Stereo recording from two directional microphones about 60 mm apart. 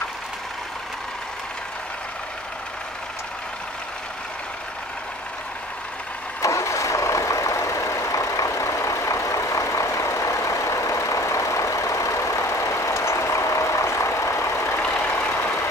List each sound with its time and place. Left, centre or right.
6.4 s vehicle: left
15.1 s vehicle: left
15.4 s vehicle: left